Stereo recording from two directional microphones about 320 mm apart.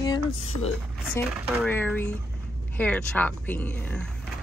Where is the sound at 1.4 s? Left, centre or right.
Centre.